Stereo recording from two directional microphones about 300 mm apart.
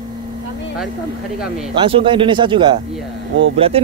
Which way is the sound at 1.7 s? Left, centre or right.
Centre.